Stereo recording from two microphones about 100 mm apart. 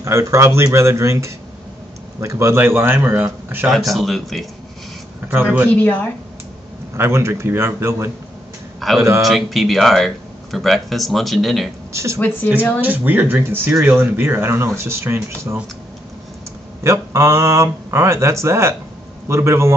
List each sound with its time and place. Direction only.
0.0 s speech: 30° right (ahead or behind)
3.6 s speech: centre (ahead or behind)
5.3 s speech: 20° right (ahead or behind)
5.8 s speech: 20° left (ahead or behind)
7.0 s speech: 25° right (ahead or behind)
8.7 s a sound: centre (ahead or behind)
9.0 s a man's voice: 30° right (ahead or behind)
9.3 s speech: centre (ahead or behind)
11.9 s speech: 30° right (ahead or behind)
12.8 s speech: 20° right (ahead or behind)
16.8 s speech: 30° right (ahead or behind)